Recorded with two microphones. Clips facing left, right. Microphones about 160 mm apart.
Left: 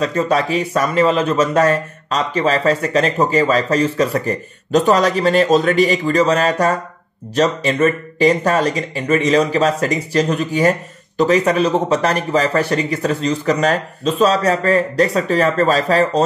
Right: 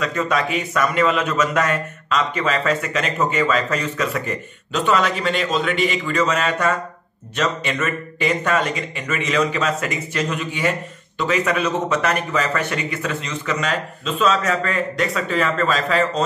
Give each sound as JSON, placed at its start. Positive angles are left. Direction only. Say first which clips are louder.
{"t": 0.0, "sound": "speech", "louder": "left 4 dB", "side_deg": 30}